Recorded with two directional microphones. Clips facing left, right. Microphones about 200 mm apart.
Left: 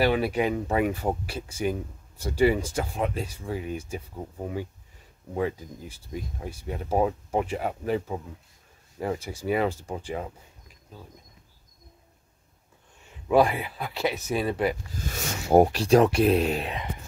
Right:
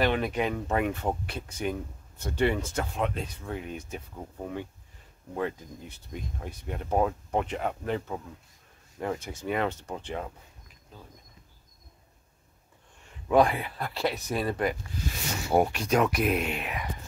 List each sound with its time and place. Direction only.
0.0 s speech: 10° left (ahead or behind)
13.3 s speech: 5° left (ahead or behind)
15.0 s speech: 40° left (ahead or behind)